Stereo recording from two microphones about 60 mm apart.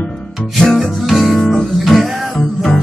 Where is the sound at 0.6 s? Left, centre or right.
Centre.